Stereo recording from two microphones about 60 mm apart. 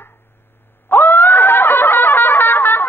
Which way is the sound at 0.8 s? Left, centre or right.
Left.